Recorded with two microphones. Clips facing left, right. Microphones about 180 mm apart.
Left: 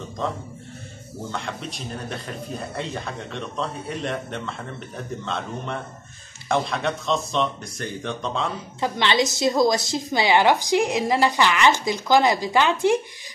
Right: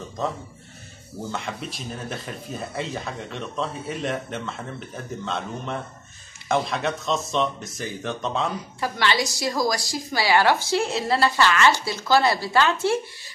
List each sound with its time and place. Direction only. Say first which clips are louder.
1.3 s speech: left 1 dB; centre (ahead or behind)
8.8 s a woman's voice: left 3 dB; 20° left (ahead or behind)